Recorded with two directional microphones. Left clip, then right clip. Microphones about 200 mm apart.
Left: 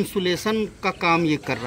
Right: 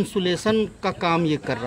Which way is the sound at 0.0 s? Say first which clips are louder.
Even; 30° right (ahead or behind).